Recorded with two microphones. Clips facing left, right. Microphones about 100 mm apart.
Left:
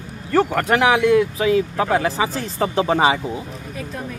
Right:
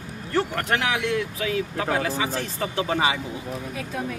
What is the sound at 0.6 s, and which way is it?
Speech, 40° left (ahead or behind).